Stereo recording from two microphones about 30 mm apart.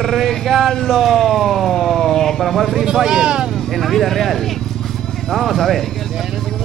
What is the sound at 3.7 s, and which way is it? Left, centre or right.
Speech, centre.